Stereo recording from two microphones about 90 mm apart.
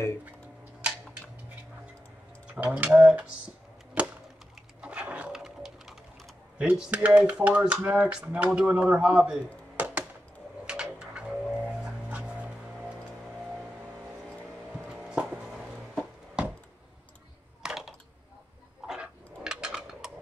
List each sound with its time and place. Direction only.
2.6 s speech: 15° right (ahead or behind)
4.8 s sewing machine: 15° right (ahead or behind)
5.3 s bird: 5° right (ahead or behind)
6.6 s speech: 10° right (ahead or behind)
9.8 s a sound: 15° right (ahead or behind)
10.6 s vehicle: 10° right (ahead or behind)
14.7 s a sound: 10° right (ahead or behind)
17.6 s a sound: 5° right (ahead or behind)
18.9 s dog: 10° right (ahead or behind)